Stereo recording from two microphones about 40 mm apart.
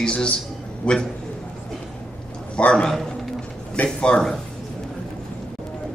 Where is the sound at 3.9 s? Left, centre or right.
Left.